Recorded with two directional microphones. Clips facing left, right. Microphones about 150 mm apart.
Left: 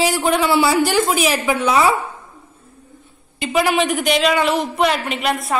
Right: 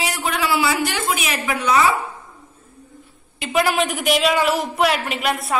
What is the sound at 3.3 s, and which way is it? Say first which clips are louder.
A woman's voice: left 2 dB; centre (ahead or behind).